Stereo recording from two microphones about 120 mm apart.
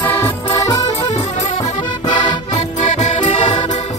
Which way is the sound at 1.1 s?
60° left (ahead or behind).